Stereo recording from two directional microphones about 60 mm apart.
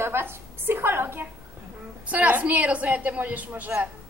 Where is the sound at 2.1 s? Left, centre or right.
Right.